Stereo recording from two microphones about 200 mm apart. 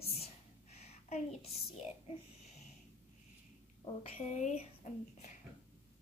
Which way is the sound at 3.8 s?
35° left (ahead or behind).